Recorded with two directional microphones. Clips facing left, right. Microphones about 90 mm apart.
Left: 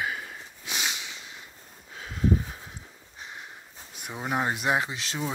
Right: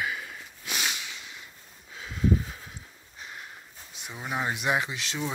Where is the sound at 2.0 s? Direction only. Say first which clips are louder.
Left 1 dB; 40° left (ahead or behind).